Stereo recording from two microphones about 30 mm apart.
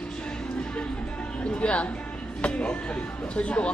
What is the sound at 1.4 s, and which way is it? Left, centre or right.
Music, left.